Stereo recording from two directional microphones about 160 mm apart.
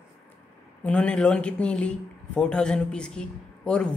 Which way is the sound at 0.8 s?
5° left (ahead or behind).